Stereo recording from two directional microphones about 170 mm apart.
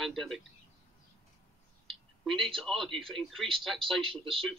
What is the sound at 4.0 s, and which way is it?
Speech, 30° right (ahead or behind).